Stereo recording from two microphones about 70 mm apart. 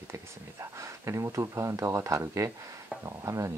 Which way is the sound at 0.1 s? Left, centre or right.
Right.